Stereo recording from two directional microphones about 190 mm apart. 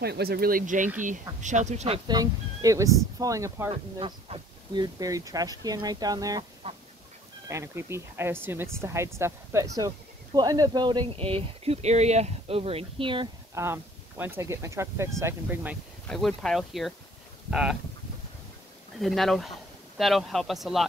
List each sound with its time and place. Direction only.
0.0 s speech: 55° right (ahead or behind); by 2.0 s 35° right (ahead or behind)
2.0 s speech: 20° right (ahead or behind)
4.0 s speech: 25° right (ahead or behind)
6.6 s duck: 30° right (ahead or behind)
7.4 s speech: 15° right (ahead or behind)
13.6 s speech: 10° right (ahead or behind)
16.1 s speech: 5° left (ahead or behind)
18.9 s speech: centre (ahead or behind)